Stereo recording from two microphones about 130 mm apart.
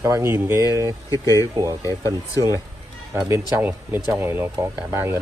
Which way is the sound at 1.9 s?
25° left (ahead or behind).